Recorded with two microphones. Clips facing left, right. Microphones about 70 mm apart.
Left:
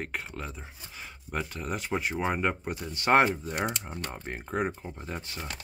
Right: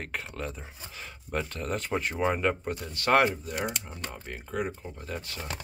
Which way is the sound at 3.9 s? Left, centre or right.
Left.